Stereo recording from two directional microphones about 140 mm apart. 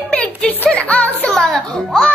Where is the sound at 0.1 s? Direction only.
10° left (ahead or behind).